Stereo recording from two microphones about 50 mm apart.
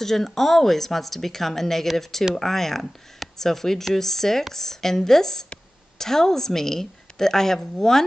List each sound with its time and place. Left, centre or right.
0.0 s a woman's voice: centre